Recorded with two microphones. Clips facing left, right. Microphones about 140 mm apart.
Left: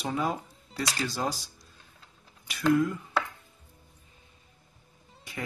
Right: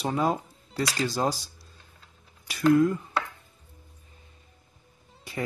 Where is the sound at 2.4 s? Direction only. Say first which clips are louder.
Right 4 dB; 40° right (ahead or behind).